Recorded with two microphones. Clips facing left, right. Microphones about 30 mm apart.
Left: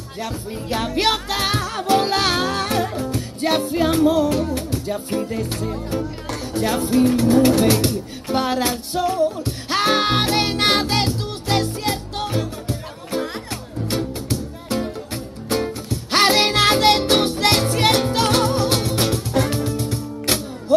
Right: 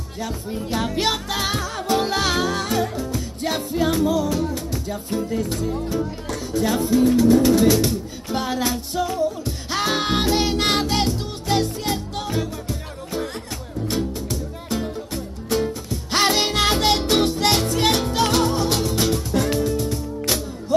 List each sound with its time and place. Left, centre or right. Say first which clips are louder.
0.2 s music: even; left
13.5 s music: left 1 dB; left